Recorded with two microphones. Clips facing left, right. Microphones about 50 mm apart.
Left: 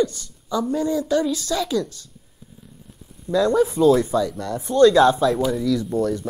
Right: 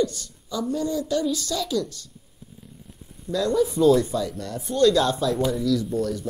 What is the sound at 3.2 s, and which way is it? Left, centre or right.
Speech, left.